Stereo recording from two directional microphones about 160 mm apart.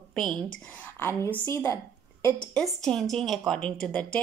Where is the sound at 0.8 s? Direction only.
15° left (ahead or behind).